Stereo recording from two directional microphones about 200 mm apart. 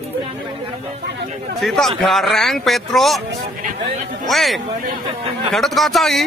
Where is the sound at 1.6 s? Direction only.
Centre (ahead or behind).